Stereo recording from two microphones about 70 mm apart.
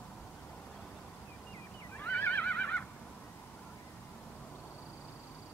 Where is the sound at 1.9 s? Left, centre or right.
Left.